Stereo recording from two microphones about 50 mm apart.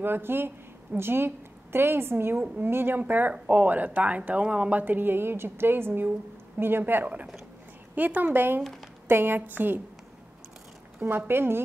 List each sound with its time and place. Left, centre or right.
0.0 s a woman's voice: right
7.9 s a woman's voice: right
11.0 s a woman's voice: right